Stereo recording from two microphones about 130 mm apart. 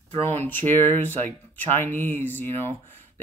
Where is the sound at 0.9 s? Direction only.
15° left (ahead or behind).